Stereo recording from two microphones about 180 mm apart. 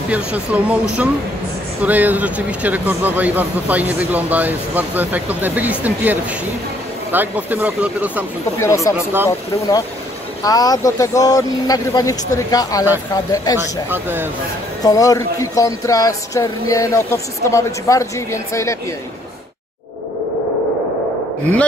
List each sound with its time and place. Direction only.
0.1 s speech: 5° right (ahead or behind)
8.5 s speech: 15° left (ahead or behind)
10.4 s speech: 20° left (ahead or behind)
13.8 s speech: 10° right (ahead or behind)
14.8 s speech: 20° left (ahead or behind)